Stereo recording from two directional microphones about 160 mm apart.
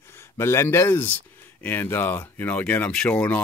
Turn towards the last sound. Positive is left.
turn(degrees=5)  # may be behind; listen again after turning